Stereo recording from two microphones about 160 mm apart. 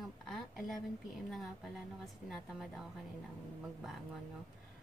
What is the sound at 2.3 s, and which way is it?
Speech, centre (ahead or behind).